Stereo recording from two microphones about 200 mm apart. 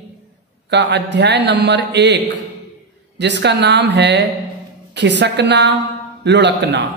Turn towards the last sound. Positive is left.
turn(degrees=-60)  # may be behind; listen again after turning